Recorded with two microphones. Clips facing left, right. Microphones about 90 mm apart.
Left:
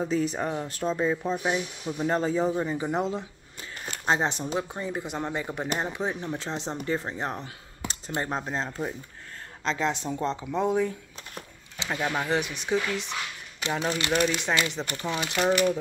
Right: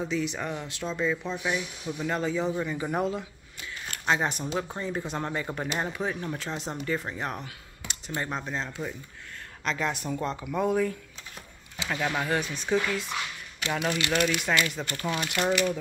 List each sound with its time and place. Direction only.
0.0 s speech: 40° left (ahead or behind)
2.5 s speech: 25° left (ahead or behind)
4.7 s speech: 15° left (ahead or behind)